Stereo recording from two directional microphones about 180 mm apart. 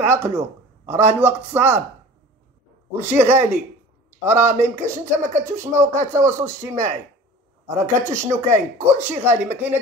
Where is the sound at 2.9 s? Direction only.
10° right (ahead or behind).